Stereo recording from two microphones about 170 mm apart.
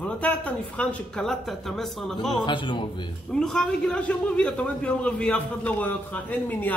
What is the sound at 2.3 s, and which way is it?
Speech, 30° left (ahead or behind).